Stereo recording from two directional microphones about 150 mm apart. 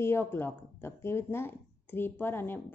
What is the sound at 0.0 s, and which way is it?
A woman's voice, 15° left (ahead or behind).